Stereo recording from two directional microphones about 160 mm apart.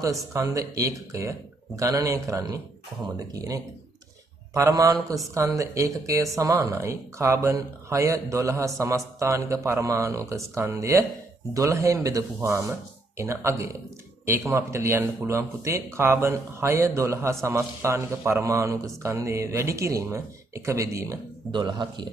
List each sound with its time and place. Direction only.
0.3 s a man's voice: 20° right (ahead or behind)